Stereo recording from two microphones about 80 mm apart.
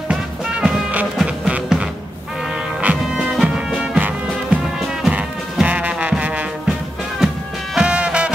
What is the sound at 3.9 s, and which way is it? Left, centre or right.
Music, centre.